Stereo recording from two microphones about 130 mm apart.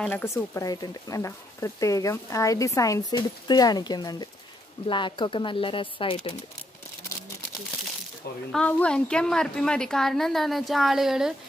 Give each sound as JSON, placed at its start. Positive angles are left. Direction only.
{"t": 0.1, "sound": "speech", "side_deg": 20}
{"t": 8.5, "sound": "a woman's voice", "side_deg": 10}